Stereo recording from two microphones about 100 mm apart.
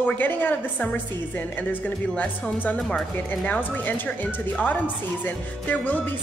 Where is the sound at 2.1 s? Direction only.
15° left (ahead or behind).